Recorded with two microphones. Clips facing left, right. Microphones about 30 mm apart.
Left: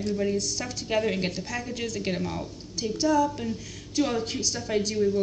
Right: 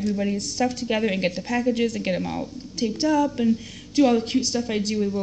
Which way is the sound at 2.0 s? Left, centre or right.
Centre.